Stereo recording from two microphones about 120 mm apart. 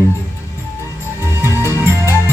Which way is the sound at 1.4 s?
20° left (ahead or behind).